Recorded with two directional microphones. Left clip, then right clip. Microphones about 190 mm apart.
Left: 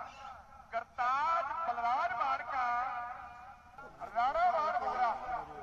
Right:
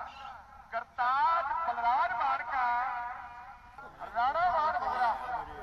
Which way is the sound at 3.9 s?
25° left (ahead or behind).